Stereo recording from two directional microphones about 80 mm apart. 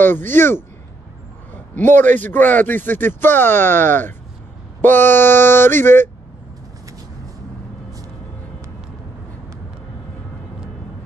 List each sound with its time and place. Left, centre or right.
0.0 s speech: left
1.9 s speech: left